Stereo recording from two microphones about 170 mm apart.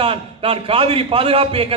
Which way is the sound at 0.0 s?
35° right (ahead or behind).